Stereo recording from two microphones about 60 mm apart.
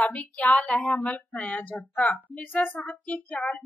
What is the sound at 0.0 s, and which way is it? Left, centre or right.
Speech, left.